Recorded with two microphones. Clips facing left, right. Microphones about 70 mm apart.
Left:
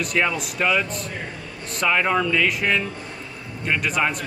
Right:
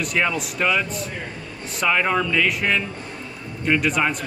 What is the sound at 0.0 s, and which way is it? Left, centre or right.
Speech, centre.